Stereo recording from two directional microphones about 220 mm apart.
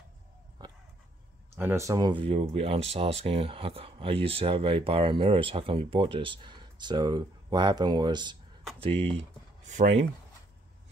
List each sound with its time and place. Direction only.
1.6 s speech: 10° right (ahead or behind); by 9.9 s 35° right (ahead or behind)